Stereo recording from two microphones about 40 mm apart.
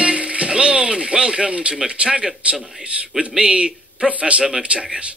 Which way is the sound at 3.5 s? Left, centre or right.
Right.